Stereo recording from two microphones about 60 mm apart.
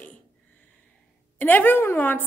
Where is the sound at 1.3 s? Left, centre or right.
Left.